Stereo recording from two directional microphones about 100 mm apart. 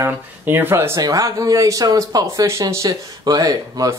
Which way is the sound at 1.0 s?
35° right (ahead or behind).